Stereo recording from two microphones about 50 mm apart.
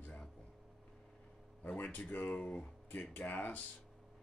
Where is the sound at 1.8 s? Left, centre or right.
Left.